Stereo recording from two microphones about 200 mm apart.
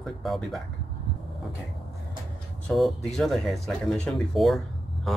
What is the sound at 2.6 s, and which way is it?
Speech, centre (ahead or behind).